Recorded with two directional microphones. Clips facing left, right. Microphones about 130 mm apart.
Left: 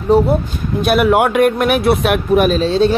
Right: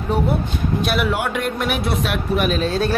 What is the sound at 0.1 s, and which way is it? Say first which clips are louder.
Speech: left 9 dB; 35° left (ahead or behind).